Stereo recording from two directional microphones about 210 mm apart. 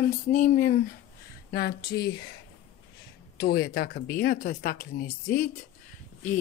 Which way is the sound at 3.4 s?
50° left (ahead or behind).